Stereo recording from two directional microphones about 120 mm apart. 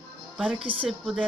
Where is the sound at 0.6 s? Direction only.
50° right (ahead or behind).